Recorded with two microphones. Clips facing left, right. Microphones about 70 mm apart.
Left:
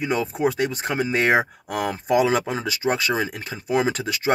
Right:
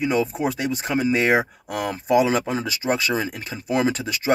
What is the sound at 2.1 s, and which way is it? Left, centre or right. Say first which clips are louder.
Speech: right 1 dB; left.